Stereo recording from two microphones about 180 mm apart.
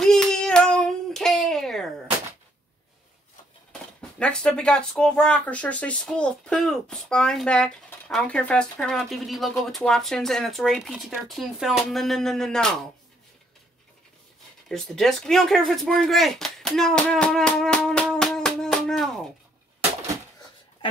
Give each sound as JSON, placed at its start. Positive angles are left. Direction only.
{"t": 0.0, "sound": "child singing", "side_deg": 5}
{"t": 4.2, "sound": "speech", "side_deg": 5}
{"t": 14.7, "sound": "speech", "side_deg": 0}